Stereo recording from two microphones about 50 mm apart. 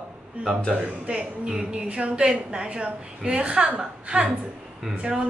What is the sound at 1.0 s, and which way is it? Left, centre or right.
A woman's voice, right.